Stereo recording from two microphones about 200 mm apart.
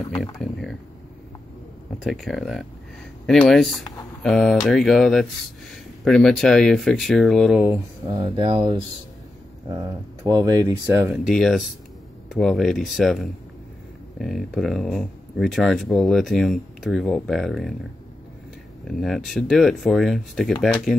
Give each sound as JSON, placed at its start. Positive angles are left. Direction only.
{"t": 0.4, "sound": "a sound", "side_deg": 0}
{"t": 2.0, "sound": "speech", "side_deg": 0}
{"t": 8.1, "sound": "speech", "side_deg": -25}
{"t": 11.2, "sound": "speech", "side_deg": 0}
{"t": 18.9, "sound": "speech", "side_deg": 0}